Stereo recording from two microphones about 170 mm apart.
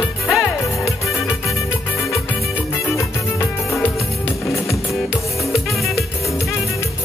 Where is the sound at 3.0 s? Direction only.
15° left (ahead or behind).